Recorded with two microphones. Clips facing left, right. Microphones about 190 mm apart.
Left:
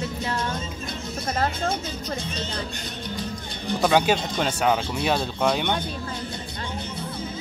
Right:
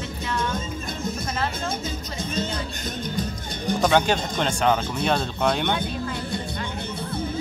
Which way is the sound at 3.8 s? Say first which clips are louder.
Left 1 dB; 5° left (ahead or behind).